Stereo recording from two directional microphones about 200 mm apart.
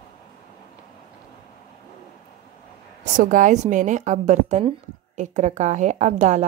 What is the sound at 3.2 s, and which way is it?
A woman's voice, 40° right (ahead or behind).